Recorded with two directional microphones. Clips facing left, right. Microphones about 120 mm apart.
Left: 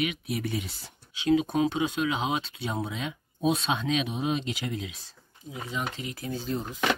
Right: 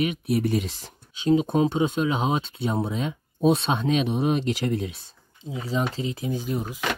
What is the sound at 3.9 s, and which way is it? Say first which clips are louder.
Speech: right 7 dB; 45° right (ahead or behind).